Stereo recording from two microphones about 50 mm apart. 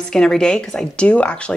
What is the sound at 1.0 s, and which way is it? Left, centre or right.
Speech, left.